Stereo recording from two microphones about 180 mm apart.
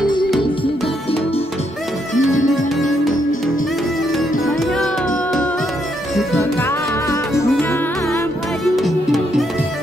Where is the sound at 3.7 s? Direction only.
Centre (ahead or behind).